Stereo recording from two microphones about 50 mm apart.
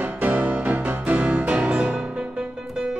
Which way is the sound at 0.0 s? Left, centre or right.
Right.